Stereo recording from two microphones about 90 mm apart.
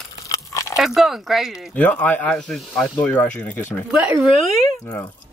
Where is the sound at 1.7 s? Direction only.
15° left (ahead or behind).